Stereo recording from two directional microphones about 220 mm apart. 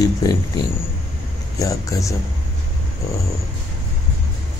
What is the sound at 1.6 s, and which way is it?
Speech, 15° left (ahead or behind).